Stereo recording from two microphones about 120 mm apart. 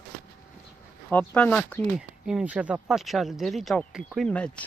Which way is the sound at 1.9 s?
5° right (ahead or behind).